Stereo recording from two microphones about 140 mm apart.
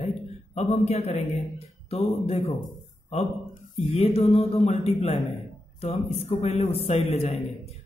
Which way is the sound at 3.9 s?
45° left (ahead or behind).